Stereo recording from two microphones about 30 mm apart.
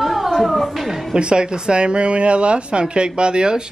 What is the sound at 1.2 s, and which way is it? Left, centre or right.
Speech, right.